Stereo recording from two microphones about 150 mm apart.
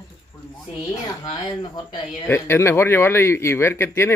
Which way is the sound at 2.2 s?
15° left (ahead or behind).